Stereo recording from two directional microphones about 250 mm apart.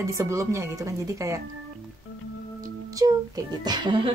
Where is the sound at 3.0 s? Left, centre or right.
Centre.